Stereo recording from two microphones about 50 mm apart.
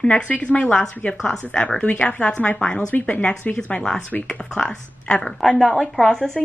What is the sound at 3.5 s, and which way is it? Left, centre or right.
A woman's voice, centre.